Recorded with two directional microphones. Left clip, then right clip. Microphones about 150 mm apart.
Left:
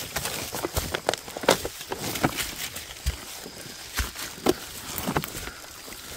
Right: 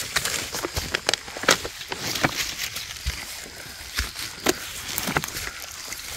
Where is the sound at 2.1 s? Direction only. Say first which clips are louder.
Right 3 dB; 30° left (ahead or behind).